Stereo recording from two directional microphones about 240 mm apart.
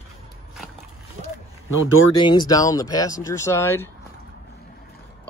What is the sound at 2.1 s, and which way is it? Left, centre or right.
Speech, centre.